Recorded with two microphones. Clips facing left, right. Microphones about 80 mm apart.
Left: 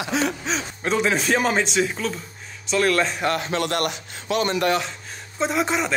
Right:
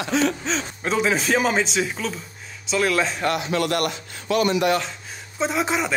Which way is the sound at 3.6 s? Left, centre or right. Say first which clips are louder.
Right 1 dB; left.